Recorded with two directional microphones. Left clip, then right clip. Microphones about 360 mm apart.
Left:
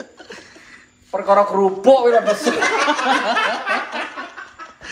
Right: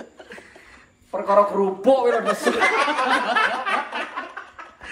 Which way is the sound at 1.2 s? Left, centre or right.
Left.